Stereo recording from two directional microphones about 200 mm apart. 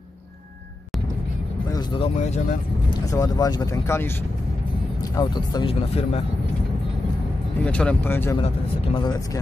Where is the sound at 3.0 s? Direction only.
20° left (ahead or behind).